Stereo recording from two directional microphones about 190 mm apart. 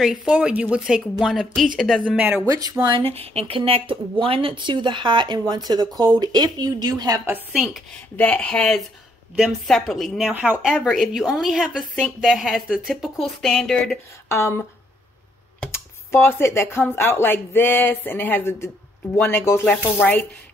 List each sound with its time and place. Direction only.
0.0 s a woman's voice: centre (ahead or behind)
2.0 s speech: 10° right (ahead or behind)
2.4 s speech: 20° right (ahead or behind)
3.0 s a woman's voice: 30° right (ahead or behind); by 13.9 s centre (ahead or behind)
15.6 s speech: 10° left (ahead or behind)